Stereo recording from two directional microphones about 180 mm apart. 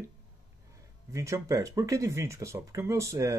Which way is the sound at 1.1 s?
15° right (ahead or behind).